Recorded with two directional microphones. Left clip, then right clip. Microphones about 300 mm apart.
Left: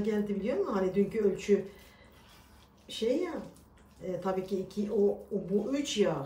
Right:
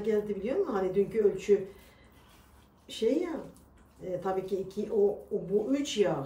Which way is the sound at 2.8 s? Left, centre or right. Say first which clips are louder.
Right 2 dB; centre.